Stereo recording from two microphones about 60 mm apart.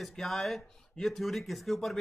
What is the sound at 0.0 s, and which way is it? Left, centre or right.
Speech, centre.